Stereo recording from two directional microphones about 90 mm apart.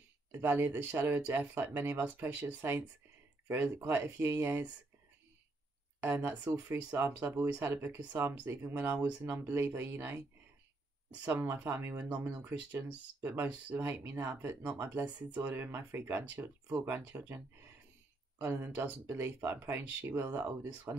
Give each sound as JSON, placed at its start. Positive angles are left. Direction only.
{"t": 0.3, "sound": "speech", "side_deg": -25}
{"t": 6.0, "sound": "speech", "side_deg": -25}
{"t": 11.5, "sound": "speech", "side_deg": -25}
{"t": 18.4, "sound": "speech", "side_deg": -25}